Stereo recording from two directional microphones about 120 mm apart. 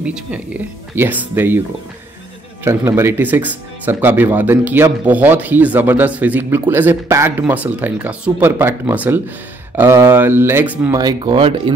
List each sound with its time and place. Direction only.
0.0 s speech: 10° right (ahead or behind)
2.6 s speech: 25° right (ahead or behind)
10.9 s speech: 35° right (ahead or behind)